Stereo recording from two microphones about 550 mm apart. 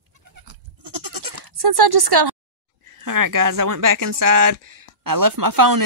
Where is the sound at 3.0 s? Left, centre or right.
Right.